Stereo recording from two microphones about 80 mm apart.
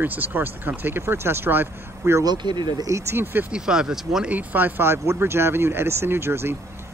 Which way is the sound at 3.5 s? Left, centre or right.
Centre.